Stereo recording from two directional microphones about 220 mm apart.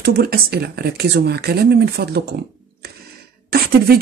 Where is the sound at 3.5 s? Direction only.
45° right (ahead or behind).